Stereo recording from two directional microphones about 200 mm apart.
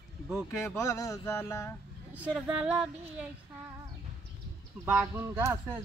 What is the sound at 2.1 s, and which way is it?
A man's voice, 5° right (ahead or behind).